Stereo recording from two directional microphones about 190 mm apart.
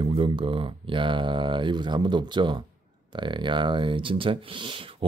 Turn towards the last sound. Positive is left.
turn(degrees=-30)  # may be behind; listen again after turning